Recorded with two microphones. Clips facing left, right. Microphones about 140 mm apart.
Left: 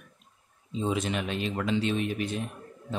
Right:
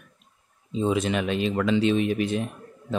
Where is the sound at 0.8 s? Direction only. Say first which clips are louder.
Right 5 dB; 90° right.